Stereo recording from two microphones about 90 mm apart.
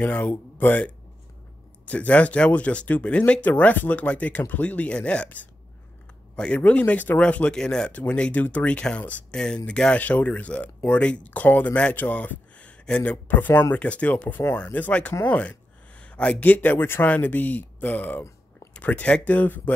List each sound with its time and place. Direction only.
0.0 s speech: 20° left (ahead or behind)
13.5 s speech: 30° left (ahead or behind)
13.7 s speech: 15° left (ahead or behind)